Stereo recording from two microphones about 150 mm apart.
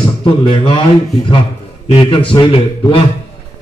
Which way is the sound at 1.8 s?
35° left (ahead or behind).